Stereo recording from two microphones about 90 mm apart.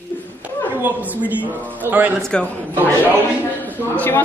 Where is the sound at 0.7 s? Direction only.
20° right (ahead or behind).